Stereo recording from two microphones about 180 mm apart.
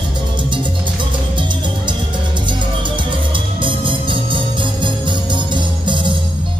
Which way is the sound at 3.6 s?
25° right (ahead or behind).